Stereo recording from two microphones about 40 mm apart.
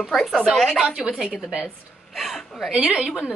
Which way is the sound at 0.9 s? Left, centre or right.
Right.